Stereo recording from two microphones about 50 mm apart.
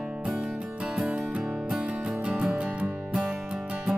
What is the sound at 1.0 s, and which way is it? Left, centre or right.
Music, right.